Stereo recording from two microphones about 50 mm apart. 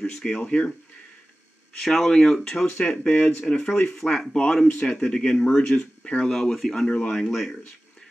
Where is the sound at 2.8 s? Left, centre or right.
Left.